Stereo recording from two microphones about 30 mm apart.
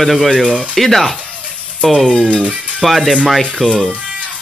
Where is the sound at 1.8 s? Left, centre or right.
Left.